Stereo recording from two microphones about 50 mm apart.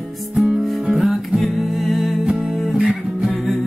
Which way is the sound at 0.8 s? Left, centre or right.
Centre.